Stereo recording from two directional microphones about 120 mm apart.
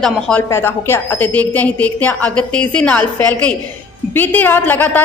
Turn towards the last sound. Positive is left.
turn(degrees=15)  # may be behind; listen again after turning